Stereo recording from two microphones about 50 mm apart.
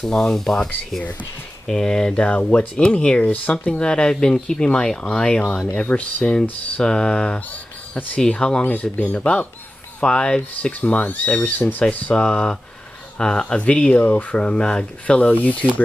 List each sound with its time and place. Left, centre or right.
0.0 s speech: centre
1.7 s speech: centre
2.2 s speech: left
3.2 s speech: left
3.8 s speech: centre
8.6 s speech: left
9.9 s speech: centre
10.8 s speech: left